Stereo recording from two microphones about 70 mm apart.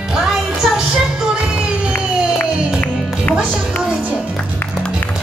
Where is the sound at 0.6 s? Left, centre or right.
Centre.